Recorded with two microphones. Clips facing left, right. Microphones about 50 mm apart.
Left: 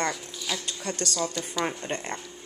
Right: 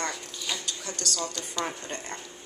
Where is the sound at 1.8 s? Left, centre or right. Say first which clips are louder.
Left 5 dB; left.